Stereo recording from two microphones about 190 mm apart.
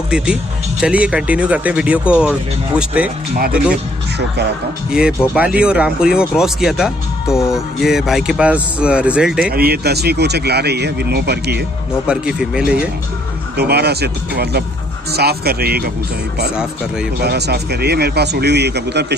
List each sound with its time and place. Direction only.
0.1 s speech: 5° right (ahead or behind)
5.3 s speech: 5° right (ahead or behind)
9.5 s speech: 55° right (ahead or behind)
12.1 s speech: 5° right (ahead or behind)
13.6 s speech: 60° right (ahead or behind)
17.2 s speech: 60° right (ahead or behind)